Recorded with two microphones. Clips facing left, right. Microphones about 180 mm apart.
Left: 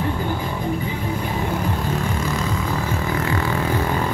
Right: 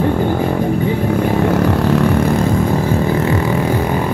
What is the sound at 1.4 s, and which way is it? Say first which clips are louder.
Vehicle: right 10 dB; 70° right (ahead or behind).